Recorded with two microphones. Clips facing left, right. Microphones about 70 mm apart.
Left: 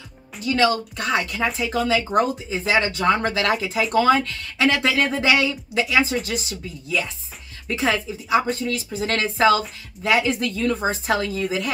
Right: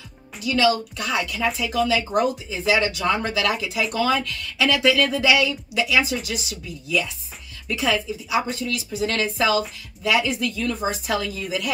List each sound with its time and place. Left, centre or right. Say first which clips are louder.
0.4 s speech: even; left